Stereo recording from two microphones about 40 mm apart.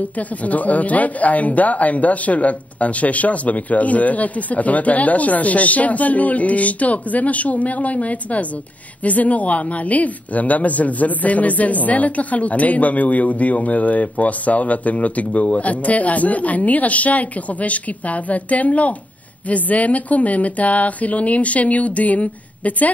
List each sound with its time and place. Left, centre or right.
0.4 s speech: left